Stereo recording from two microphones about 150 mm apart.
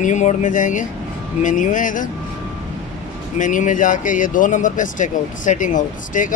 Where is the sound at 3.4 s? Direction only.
60° left (ahead or behind).